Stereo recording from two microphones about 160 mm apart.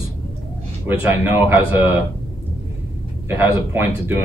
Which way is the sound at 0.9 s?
15° right (ahead or behind).